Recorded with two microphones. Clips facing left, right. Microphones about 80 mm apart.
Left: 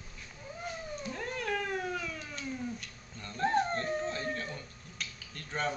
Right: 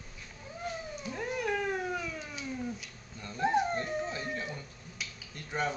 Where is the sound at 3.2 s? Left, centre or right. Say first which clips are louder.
Right 1 dB; centre.